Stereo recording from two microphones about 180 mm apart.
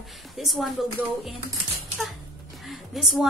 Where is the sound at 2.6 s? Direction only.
Centre (ahead or behind).